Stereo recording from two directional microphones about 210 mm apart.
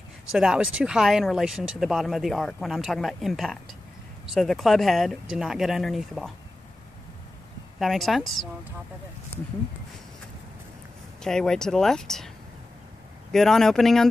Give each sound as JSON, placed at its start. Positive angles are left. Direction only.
{"t": 0.3, "sound": "speech", "side_deg": -5}
{"t": 7.8, "sound": "speech", "side_deg": 0}
{"t": 11.2, "sound": "speech", "side_deg": 5}
{"t": 13.3, "sound": "speech", "side_deg": 0}